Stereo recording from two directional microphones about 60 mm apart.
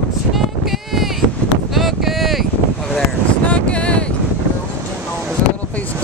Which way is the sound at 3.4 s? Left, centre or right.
Left.